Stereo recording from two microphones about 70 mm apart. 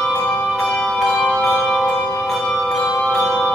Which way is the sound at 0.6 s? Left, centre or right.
Centre.